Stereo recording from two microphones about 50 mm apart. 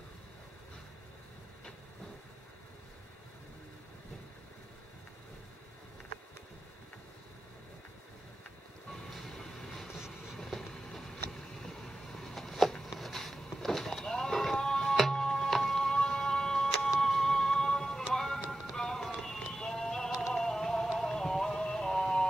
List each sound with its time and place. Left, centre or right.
9.1 s train: centre
9.9 s train: centre
10.7 s a sound: centre
17.0 s music: centre
20.3 s a sound: centre
21.0 s music: centre